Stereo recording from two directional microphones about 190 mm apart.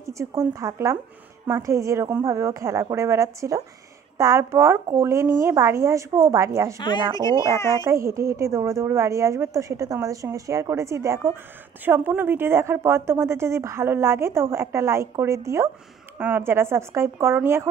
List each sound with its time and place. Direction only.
0.0 s a woman's voice: 15° right (ahead or behind)
6.8 s speech: 20° left (ahead or behind)
7.7 s a woman's voice: 15° right (ahead or behind)